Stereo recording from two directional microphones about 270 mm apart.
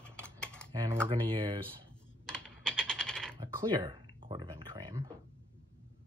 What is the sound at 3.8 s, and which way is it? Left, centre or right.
Speech, centre.